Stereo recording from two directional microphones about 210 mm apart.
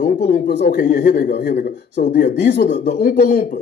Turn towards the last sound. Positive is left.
turn(degrees=45)  # may be behind; listen again after turning